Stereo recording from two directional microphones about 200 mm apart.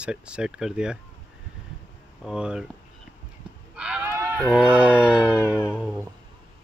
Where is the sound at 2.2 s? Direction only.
5° right (ahead or behind).